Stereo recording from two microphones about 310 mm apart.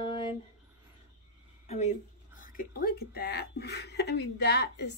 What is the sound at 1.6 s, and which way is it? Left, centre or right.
A woman's voice, left.